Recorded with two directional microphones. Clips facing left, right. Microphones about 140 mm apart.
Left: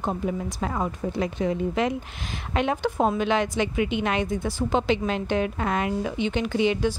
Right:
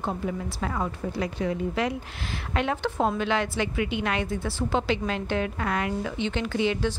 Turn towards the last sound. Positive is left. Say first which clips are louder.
# left 3 dB
turn(degrees=15)  # may be behind; listen again after turning